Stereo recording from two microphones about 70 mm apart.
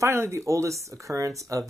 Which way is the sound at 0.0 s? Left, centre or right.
Right.